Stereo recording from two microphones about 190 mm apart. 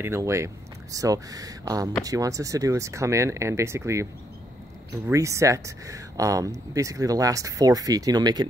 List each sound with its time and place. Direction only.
0.0 s speech: 15° right (ahead or behind)